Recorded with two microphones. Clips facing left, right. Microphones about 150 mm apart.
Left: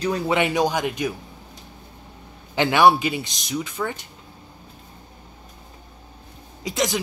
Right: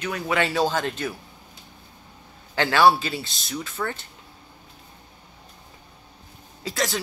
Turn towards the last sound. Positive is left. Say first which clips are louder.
# left 3 dB
turn(degrees=15)  # may be behind; listen again after turning